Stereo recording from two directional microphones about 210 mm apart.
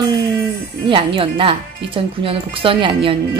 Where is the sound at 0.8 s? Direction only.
25° right (ahead or behind).